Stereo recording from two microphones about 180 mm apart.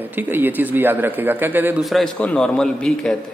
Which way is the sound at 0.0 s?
10° right (ahead or behind).